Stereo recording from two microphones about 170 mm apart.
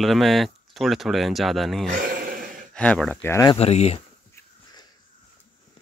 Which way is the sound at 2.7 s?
5° left (ahead or behind).